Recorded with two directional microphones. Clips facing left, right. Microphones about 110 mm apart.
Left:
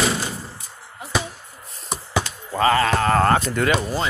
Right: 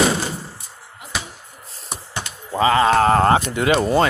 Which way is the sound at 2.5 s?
20° right (ahead or behind).